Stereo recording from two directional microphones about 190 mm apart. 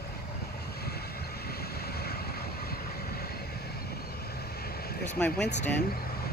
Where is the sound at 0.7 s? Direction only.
55° left (ahead or behind).